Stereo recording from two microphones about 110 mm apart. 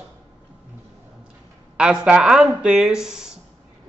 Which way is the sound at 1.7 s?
10° right (ahead or behind).